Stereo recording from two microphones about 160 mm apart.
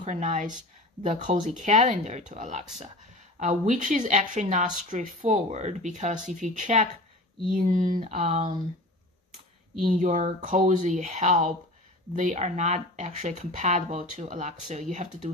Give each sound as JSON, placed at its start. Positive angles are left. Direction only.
{"t": 0.0, "sound": "speech", "side_deg": -50}
{"t": 8.0, "sound": "speech", "side_deg": -40}
{"t": 9.8, "sound": "speech", "side_deg": -55}